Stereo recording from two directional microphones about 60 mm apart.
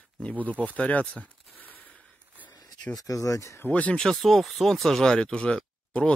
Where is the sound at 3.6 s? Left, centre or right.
Left.